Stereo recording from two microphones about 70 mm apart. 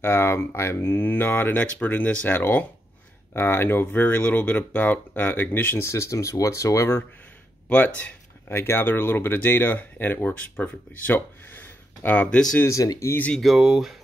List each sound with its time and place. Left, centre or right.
0.0 s speech: left
5.9 s speech: left
8.5 s speech: left
12.6 s speech: left
13.4 s speech: centre